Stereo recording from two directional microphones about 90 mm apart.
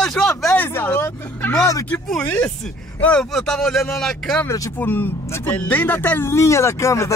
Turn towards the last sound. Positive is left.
turn(degrees=35)  # may be behind; listen again after turning